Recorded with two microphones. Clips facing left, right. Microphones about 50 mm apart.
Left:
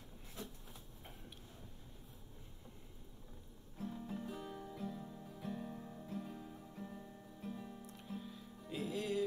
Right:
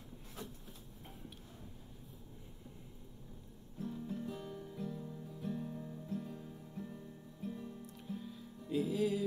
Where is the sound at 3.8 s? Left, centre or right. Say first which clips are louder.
Right 3 dB; centre.